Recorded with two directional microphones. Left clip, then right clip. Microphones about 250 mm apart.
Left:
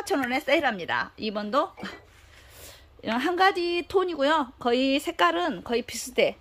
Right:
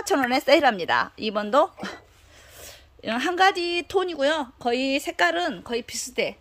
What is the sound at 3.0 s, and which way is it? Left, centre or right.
Speech, centre.